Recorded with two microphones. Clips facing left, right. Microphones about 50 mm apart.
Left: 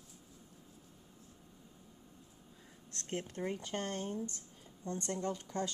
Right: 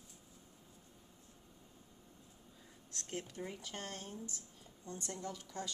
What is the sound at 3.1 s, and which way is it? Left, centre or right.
Speech, left.